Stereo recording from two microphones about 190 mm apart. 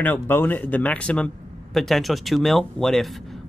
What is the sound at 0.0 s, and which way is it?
Speech, 10° left (ahead or behind).